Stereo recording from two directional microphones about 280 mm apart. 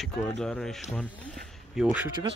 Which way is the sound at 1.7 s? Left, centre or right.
Centre.